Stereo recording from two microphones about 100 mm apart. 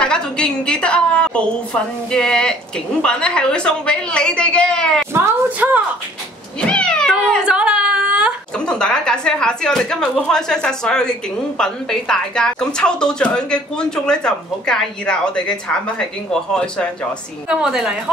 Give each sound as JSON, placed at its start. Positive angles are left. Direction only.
{"t": 0.0, "sound": "speech", "side_deg": 10}
{"t": 5.1, "sound": "a sound", "side_deg": -20}
{"t": 6.6, "sound": "cat", "side_deg": 10}
{"t": 7.4, "sound": "a sound", "side_deg": -10}
{"t": 8.5, "sound": "speech", "side_deg": 10}
{"t": 17.5, "sound": "a woman's voice", "side_deg": -5}